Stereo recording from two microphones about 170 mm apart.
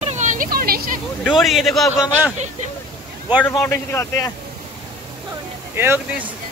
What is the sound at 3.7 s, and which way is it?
Speech, 20° left (ahead or behind).